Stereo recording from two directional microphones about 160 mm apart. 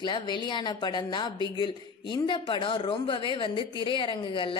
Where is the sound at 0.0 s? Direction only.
30° left (ahead or behind).